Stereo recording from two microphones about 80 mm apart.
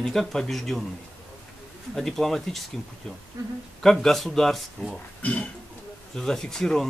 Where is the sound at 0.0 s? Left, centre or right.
Centre.